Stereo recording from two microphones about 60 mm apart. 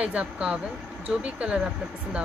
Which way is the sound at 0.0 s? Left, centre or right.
Right.